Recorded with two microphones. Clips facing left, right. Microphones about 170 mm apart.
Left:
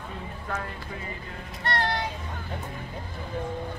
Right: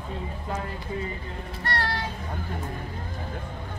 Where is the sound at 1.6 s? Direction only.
20° left (ahead or behind).